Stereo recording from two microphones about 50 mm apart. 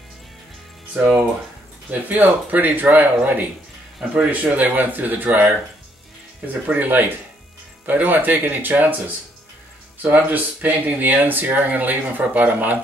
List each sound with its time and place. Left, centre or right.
0.9 s speech: centre
1.9 s speech: right
4.1 s speech: right
10.0 s speech: right